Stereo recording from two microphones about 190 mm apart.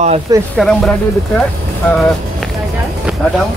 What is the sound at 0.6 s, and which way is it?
Speech, 5° left (ahead or behind).